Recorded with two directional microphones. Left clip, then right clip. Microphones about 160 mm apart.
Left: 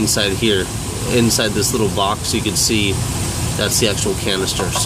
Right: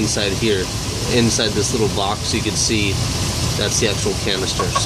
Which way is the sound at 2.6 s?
20° left (ahead or behind).